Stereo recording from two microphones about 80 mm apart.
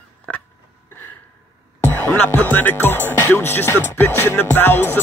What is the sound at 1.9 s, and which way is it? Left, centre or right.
Music, left.